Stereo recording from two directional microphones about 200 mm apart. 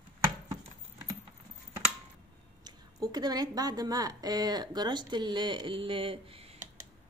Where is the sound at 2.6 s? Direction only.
20° right (ahead or behind).